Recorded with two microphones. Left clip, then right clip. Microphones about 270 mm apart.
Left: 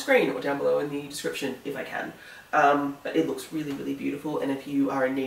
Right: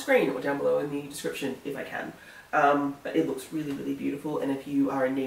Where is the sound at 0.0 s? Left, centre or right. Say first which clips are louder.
Left 1 dB; centre.